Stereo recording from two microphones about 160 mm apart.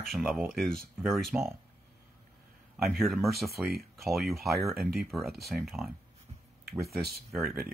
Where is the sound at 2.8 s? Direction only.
Centre (ahead or behind).